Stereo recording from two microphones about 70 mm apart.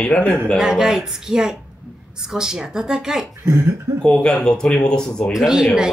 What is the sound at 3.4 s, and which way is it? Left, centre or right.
Speech, right.